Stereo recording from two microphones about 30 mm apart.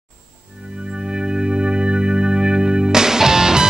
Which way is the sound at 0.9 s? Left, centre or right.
Right.